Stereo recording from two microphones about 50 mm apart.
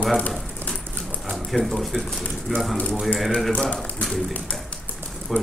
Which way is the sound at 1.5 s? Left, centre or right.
Centre.